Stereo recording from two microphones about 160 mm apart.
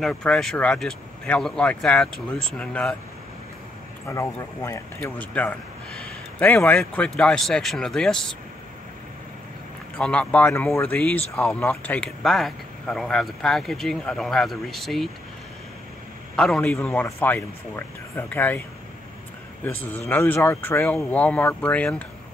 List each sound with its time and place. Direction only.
0.0 s speech: 5° left (ahead or behind)
4.1 s speech: 20° left (ahead or behind)
9.9 s speech: 10° left (ahead or behind)
16.3 s speech: 5° left (ahead or behind)
19.6 s speech: 10° left (ahead or behind)